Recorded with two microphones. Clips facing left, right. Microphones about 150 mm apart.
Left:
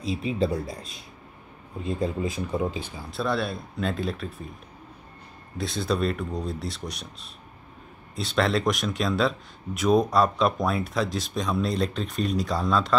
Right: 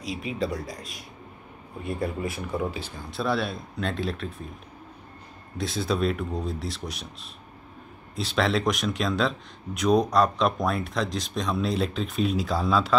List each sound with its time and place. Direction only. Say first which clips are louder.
0.1 s speech: left 4 dB; 30° left (ahead or behind)
3.0 s speech: even; centre (ahead or behind)
5.6 s speech: even; centre (ahead or behind)
8.2 s speech: left 1 dB; centre (ahead or behind)